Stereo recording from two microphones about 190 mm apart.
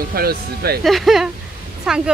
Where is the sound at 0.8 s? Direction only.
Centre (ahead or behind).